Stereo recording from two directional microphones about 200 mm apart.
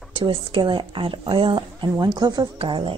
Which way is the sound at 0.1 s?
25° right (ahead or behind).